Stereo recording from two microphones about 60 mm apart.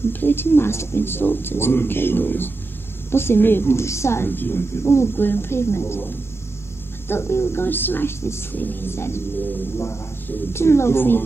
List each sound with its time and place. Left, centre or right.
0.1 s a woman's voice: left
4.3 s speech: left
8.5 s speech: left
10.2 s a woman's voice: left